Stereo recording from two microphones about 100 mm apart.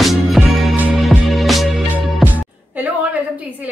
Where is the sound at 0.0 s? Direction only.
Centre (ahead or behind).